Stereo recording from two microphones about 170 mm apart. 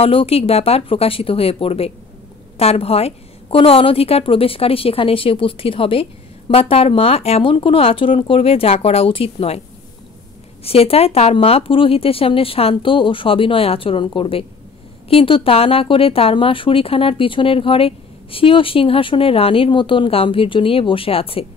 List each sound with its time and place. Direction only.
0.0 s speech: 35° left (ahead or behind)
10.6 s speech: 35° left (ahead or behind)